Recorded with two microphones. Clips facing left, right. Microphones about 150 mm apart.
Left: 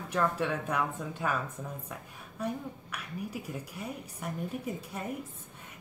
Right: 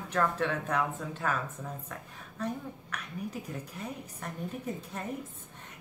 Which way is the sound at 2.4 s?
10° left (ahead or behind).